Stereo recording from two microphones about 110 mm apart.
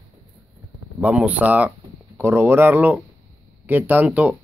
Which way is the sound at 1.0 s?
10° right (ahead or behind).